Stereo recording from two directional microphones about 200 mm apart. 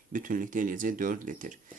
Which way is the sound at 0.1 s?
40° right (ahead or behind).